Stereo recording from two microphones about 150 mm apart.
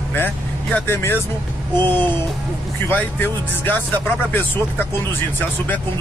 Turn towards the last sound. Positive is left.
turn(degrees=10)  # may be behind; listen again after turning